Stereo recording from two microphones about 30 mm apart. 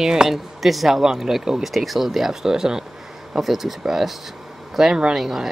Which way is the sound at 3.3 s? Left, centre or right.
Centre.